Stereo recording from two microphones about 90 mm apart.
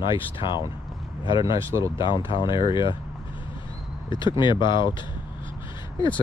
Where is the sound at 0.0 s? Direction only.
65° left (ahead or behind).